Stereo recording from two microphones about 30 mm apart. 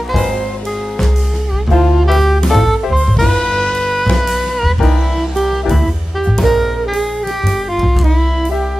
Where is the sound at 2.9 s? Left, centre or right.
Centre.